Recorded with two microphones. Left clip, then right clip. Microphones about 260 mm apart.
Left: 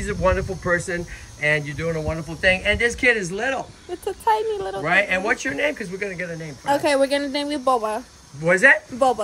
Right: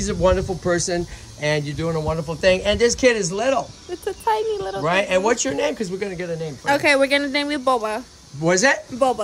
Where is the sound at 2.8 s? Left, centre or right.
Centre.